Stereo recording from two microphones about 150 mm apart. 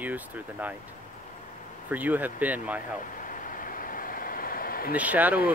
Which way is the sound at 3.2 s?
65° left (ahead or behind).